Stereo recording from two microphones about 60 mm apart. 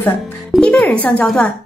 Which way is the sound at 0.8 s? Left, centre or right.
Left.